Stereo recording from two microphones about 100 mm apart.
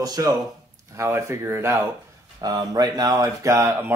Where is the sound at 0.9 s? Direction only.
25° right (ahead or behind).